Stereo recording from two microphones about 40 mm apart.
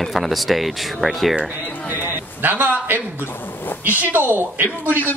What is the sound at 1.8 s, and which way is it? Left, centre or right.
A man's voice, right.